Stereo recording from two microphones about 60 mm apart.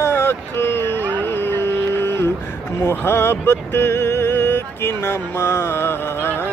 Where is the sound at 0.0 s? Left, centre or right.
Left.